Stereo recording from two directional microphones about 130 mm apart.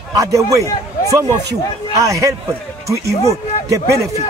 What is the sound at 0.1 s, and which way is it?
A man's voice, 25° right (ahead or behind).